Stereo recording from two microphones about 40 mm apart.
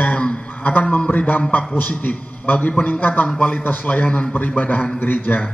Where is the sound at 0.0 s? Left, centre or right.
Left.